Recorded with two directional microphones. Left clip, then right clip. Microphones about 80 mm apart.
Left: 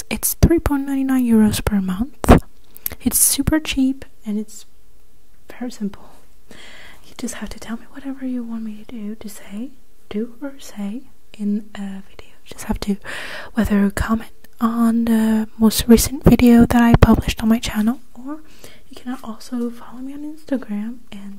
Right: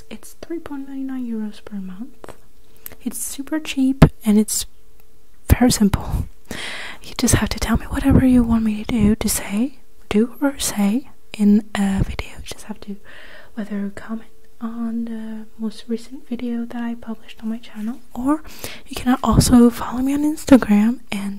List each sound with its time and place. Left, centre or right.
0.1 s speech: left
2.8 s a woman's voice: left
3.6 s speech: centre
4.0 s a sound: right
5.5 s speech: right
12.7 s speech: left
18.1 s speech: right